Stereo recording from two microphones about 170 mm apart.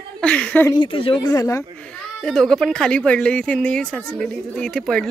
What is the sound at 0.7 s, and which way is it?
Speech, 30° left (ahead or behind).